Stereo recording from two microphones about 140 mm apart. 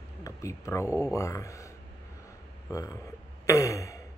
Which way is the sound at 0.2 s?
25° left (ahead or behind).